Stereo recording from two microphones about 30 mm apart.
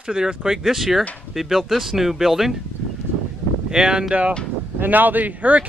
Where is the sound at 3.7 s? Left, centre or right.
Right.